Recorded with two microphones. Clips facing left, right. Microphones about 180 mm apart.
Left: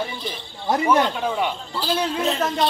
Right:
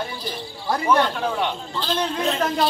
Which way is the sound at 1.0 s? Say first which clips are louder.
Even; 5° left (ahead or behind).